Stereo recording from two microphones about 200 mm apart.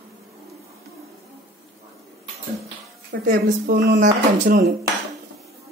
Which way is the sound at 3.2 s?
45° right (ahead or behind).